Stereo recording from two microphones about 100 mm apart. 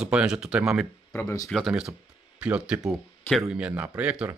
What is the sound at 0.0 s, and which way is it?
Speech, 10° right (ahead or behind).